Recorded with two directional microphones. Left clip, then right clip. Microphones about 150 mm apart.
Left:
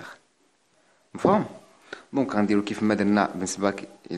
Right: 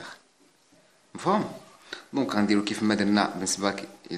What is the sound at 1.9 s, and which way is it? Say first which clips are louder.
Speech: left 2 dB; 40° left (ahead or behind).